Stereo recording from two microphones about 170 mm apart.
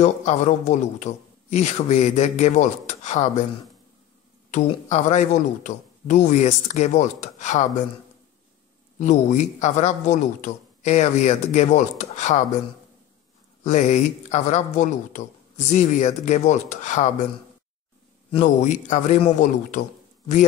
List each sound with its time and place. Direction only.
0.0 s a man's voice: 40° left (ahead or behind)
4.5 s a man's voice: 45° left (ahead or behind)
8.9 s a man's voice: 45° left (ahead or behind)
13.7 s a man's voice: 45° left (ahead or behind)
18.4 s a man's voice: 45° left (ahead or behind)